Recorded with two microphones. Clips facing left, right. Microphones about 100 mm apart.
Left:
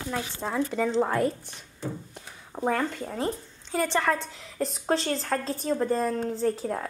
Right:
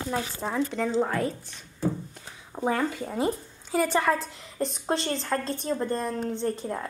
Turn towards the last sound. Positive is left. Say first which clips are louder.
# left 2 dB
turn(degrees=5)  # may be behind; listen again after turning